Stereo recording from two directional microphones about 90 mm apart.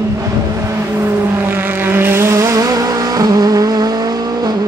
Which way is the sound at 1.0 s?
25° right (ahead or behind).